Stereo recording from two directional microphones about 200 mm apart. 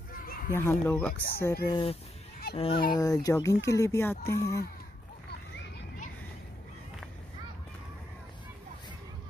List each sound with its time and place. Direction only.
0.2 s children playing: 45° left (ahead or behind)
0.6 s speech: 10° left (ahead or behind)
2.5 s fowl: 30° left (ahead or behind)
2.9 s speech: 20° left (ahead or behind)